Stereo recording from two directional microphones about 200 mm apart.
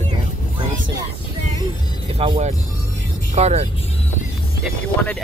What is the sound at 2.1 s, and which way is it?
Speech, 30° right (ahead or behind).